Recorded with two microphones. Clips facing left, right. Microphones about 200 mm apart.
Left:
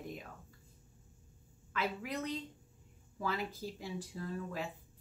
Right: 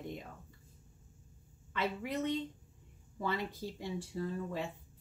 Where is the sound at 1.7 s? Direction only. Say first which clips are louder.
Right 2 dB; centre (ahead or behind).